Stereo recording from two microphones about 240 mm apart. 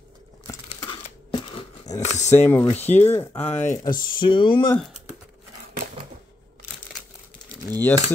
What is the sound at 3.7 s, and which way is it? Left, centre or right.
Speech, left.